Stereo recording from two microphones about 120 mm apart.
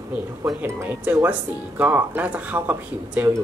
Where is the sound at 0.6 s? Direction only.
20° right (ahead or behind).